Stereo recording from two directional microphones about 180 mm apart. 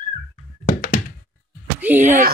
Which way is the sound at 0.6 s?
50° left (ahead or behind).